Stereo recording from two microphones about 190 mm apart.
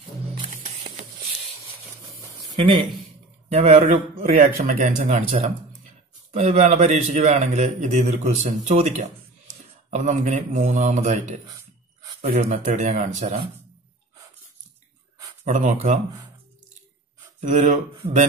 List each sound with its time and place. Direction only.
2.2 s a sound: 25° right (ahead or behind)
3.4 s a man's voice: 35° right (ahead or behind)
15.4 s a man's voice: 40° right (ahead or behind)
17.4 s speech: 40° right (ahead or behind)
17.9 s speech: 30° right (ahead or behind)